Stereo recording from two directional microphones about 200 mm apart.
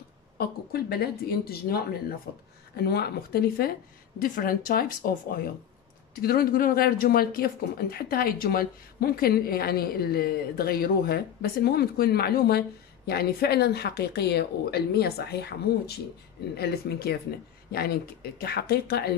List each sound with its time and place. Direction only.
0.4 s speech: 50° left (ahead or behind)